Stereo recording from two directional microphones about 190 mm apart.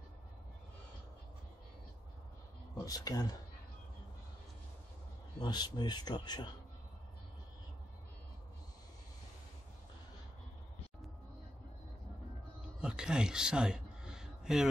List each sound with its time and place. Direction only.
2.8 s speech: 20° left (ahead or behind)
5.4 s speech: 20° left (ahead or behind)
12.8 s a sound: 5° right (ahead or behind)